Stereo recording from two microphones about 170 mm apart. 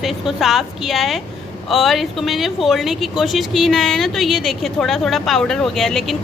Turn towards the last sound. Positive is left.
turn(degrees=0)  # may be behind; listen again after turning